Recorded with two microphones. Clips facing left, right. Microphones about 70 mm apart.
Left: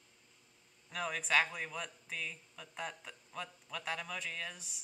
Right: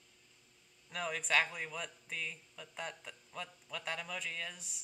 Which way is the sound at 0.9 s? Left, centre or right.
Centre.